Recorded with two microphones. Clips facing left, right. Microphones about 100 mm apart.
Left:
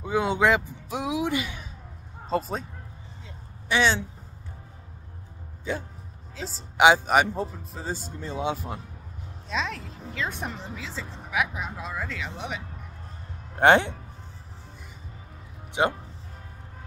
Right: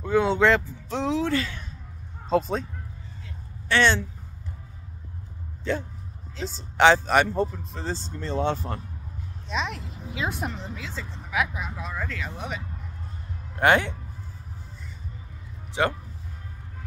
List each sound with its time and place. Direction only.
0.0 s speech: 10° left (ahead or behind)
2.2 s speech: centre (ahead or behind)
3.6 s speech: 5° left (ahead or behind)
5.7 s speech: 10° left (ahead or behind)
9.5 s speech: 5° right (ahead or behind)
11.5 s speech: 25° left (ahead or behind)
11.8 s speech: 5° left (ahead or behind); by 13.9 s 25° left (ahead or behind)
15.8 s speech: 20° left (ahead or behind)